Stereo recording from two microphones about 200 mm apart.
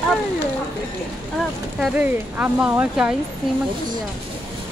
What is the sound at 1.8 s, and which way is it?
Speech, 5° right (ahead or behind).